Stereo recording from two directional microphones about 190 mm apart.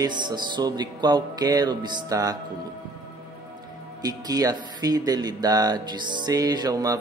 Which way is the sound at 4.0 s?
20° right (ahead or behind).